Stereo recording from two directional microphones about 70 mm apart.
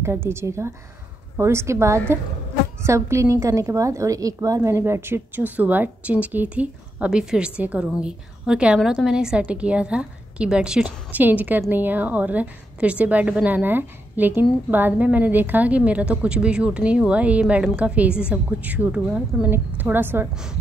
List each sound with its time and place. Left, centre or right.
0.0 s a woman's voice: right